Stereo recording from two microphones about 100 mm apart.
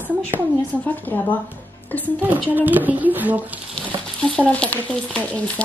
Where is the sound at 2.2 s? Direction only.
20° right (ahead or behind).